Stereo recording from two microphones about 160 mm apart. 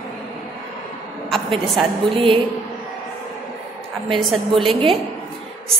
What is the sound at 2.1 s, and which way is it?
Speech, 35° right (ahead or behind).